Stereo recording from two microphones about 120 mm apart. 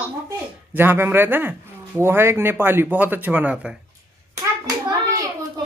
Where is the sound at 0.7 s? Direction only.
20° right (ahead or behind).